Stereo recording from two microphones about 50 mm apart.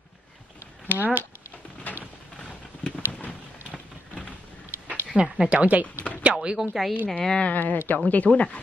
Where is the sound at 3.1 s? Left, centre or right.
Left.